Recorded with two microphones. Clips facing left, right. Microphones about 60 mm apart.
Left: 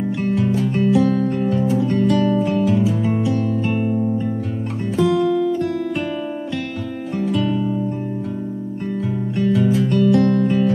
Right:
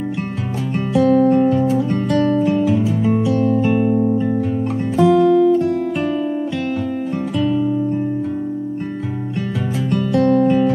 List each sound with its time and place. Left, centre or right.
0.9 s music: centre
4.9 s music: centre
9.4 s music: centre